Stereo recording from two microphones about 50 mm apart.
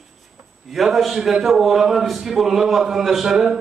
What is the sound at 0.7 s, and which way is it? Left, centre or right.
A man's voice, centre.